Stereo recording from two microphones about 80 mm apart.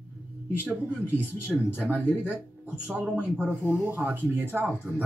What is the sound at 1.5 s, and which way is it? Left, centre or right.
Speech, centre.